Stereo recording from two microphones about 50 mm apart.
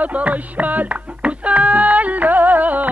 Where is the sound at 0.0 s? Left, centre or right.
Right.